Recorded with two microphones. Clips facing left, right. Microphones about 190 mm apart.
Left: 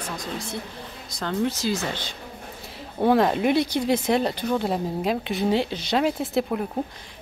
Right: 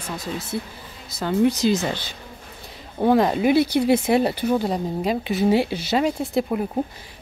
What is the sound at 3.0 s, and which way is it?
Speech, centre (ahead or behind).